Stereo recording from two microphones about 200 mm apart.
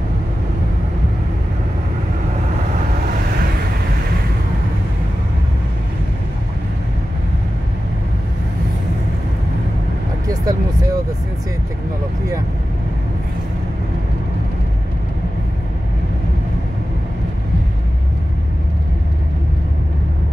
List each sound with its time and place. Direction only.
10.2 s vehicle: 20° right (ahead or behind)